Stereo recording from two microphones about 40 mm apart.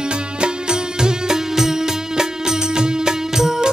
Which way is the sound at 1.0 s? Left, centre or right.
Centre.